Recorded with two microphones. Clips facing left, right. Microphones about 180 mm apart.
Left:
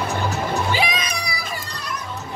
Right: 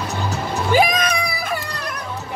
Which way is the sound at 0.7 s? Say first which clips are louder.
Right 7 dB; 50° right (ahead or behind).